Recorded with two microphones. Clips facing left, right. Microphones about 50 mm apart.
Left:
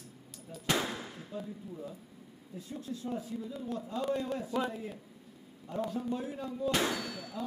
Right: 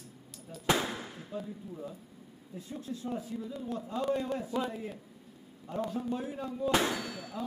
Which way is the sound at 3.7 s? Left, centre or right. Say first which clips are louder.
Right 1 dB; right.